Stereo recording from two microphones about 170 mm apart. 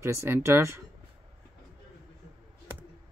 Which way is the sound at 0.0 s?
15° right (ahead or behind).